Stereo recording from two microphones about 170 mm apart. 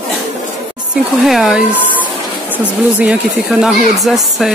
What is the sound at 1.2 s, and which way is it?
Speech, centre (ahead or behind).